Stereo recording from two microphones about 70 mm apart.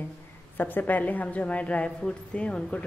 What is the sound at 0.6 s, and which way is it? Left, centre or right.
A woman's voice, left.